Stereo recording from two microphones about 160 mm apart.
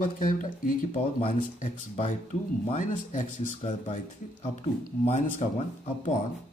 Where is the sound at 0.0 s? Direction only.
55° left (ahead or behind).